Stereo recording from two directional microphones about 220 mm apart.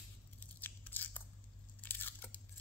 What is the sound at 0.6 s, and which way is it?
Scissors, 10° left (ahead or behind).